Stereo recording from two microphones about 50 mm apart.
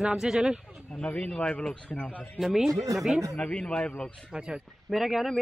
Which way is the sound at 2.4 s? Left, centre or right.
Centre.